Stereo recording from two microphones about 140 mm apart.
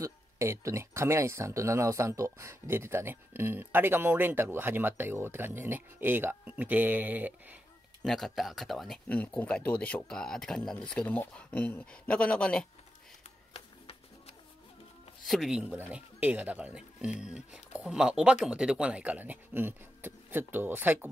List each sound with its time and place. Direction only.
0.0 s speech: 20° right (ahead or behind)
8.0 s speech: centre (ahead or behind)
15.2 s speech: centre (ahead or behind)